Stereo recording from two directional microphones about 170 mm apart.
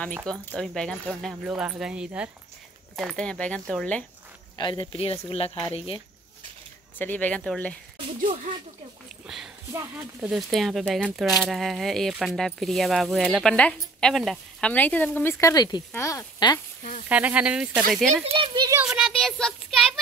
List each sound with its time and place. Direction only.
0.6 s speech: 5° left (ahead or behind)
4.6 s speech: 30° left (ahead or behind)
7.0 s speech: 10° left (ahead or behind)
9.3 s speech: centre (ahead or behind)
9.7 s a child's voice: 20° right (ahead or behind)
10.2 s speech: centre (ahead or behind); by 16.6 s 20° left (ahead or behind)
17.1 s speech: 10° right (ahead or behind)
18.2 s a child's voice: 30° right (ahead or behind)
18.8 s a child's voice: 5° right (ahead or behind)